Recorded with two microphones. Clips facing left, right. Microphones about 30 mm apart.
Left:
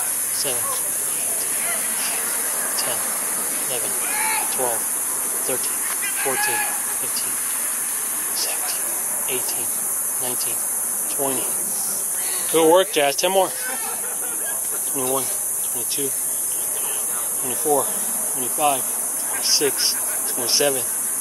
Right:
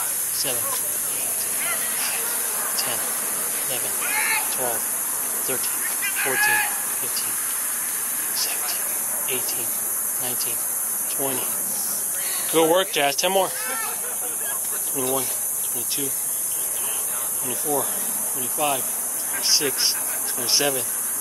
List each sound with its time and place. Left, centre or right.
0.4 s speech: centre
1.6 s a sound: centre
3.6 s speech: centre
4.1 s a sound: centre
4.6 s speech: left
5.5 s speech: centre
8.4 s vehicle: centre
9.3 s speech: centre
11.1 s speech: centre
15.0 s speech: centre
17.5 s speech: centre